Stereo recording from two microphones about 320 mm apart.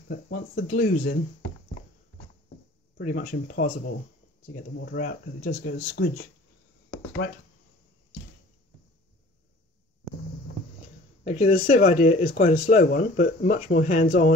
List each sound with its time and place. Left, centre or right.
0.1 s speech: left
3.0 s speech: left
4.7 s speech: left
11.2 s speech: left